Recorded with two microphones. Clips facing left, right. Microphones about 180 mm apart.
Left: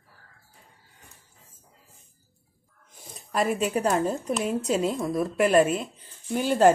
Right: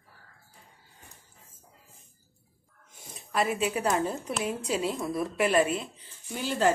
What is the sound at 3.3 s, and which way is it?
Speech, 45° left (ahead or behind).